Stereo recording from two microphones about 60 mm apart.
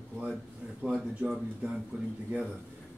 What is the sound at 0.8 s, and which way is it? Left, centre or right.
A man's voice, centre.